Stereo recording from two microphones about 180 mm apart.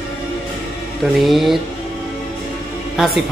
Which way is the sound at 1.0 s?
Centre (ahead or behind).